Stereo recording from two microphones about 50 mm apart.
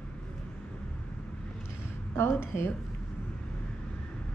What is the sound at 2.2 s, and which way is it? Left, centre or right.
Speech, left.